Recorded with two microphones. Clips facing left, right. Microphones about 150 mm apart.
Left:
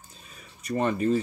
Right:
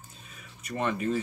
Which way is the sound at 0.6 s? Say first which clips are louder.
Left 4 dB; 35° left (ahead or behind).